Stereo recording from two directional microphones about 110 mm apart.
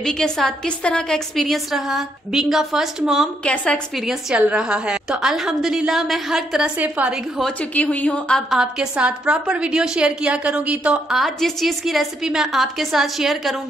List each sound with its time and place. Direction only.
0.0 s a woman's voice: 5° left (ahead or behind)
3.4 s a woman's voice: 10° left (ahead or behind)
4.1 s a woman's voice: 10° right (ahead or behind)
7.7 s a woman's voice: 15° left (ahead or behind)
8.5 s a woman's voice: 10° right (ahead or behind)